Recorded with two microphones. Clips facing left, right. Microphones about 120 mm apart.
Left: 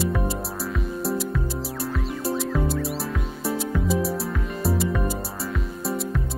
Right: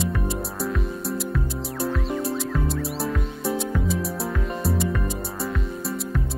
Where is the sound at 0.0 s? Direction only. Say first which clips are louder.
Left 1 dB; centre (ahead or behind).